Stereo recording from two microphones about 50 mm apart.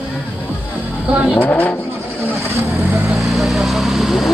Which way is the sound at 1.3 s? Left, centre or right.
Left.